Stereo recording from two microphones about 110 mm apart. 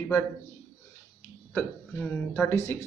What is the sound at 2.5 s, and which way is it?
Speech, 25° left (ahead or behind).